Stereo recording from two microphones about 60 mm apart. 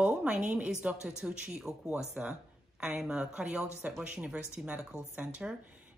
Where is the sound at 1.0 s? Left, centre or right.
Centre.